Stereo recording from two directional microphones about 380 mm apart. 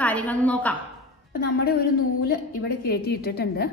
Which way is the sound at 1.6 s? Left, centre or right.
Left.